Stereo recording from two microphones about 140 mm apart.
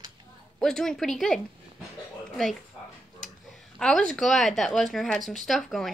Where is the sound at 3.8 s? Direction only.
5° left (ahead or behind).